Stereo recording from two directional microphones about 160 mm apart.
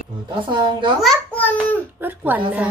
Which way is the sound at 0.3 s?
30° right (ahead or behind).